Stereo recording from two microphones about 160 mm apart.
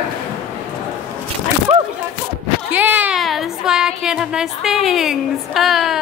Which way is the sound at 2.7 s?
10° right (ahead or behind).